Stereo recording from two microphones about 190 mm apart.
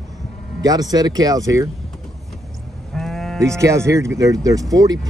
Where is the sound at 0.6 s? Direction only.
20° right (ahead or behind).